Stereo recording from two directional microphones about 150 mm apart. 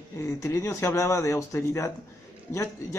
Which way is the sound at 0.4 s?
20° left (ahead or behind).